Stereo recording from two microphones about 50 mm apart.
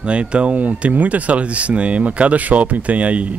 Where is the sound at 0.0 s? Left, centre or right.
Right.